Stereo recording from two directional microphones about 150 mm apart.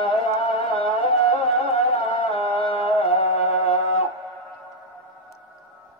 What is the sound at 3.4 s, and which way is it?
Music, 50° left (ahead or behind).